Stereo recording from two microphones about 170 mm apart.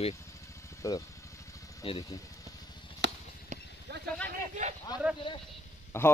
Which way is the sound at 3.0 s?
85° right.